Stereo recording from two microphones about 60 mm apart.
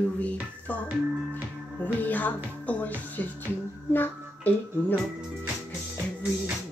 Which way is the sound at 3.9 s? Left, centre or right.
Left.